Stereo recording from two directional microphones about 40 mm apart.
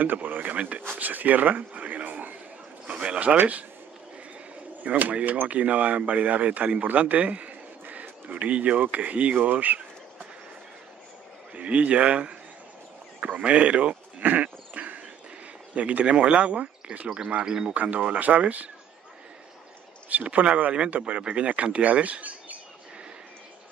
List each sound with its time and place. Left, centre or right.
0.0 s speech: right
0.5 s speech: right
0.9 s a sound: right
2.9 s a sound: right
3.3 s speech: right
4.8 s speech: right
11.5 s speech: right
13.2 s sheep: right
15.7 s speech: right
17.7 s speech: right
20.1 s speech: right